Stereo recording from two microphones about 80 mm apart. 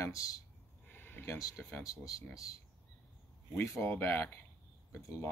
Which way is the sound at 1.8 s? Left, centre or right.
Left.